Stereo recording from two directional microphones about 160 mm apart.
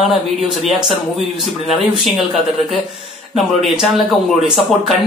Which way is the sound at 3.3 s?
Centre (ahead or behind).